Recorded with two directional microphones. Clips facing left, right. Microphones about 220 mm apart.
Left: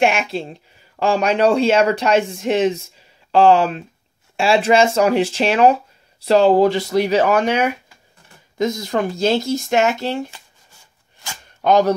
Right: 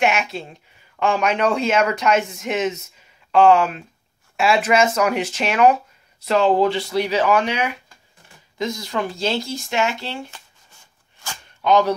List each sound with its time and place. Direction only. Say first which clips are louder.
0.0 s speech: left 3 dB; 30° left (ahead or behind)
11.6 s speech: left 2 dB; 45° left (ahead or behind)